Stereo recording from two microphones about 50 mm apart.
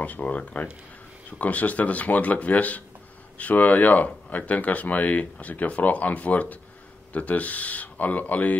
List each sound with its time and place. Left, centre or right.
0.0 s speech: left